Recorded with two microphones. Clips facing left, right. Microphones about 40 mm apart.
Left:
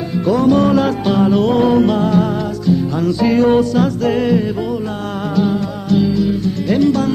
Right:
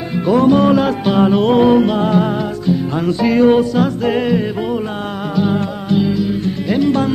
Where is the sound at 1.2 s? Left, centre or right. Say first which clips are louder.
Right 2 dB; right.